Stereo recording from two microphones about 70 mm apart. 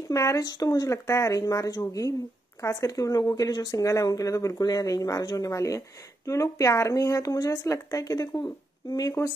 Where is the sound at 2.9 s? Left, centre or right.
Left.